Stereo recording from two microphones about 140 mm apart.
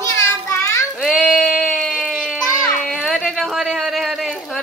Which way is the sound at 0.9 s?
5° left (ahead or behind).